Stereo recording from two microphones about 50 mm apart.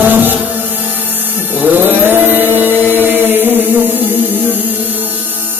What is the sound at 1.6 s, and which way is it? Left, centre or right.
Chant, right.